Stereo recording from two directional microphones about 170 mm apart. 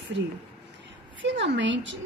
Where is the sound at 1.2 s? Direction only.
90° right.